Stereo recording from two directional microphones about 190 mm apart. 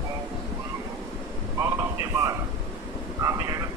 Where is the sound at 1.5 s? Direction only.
15° right (ahead or behind).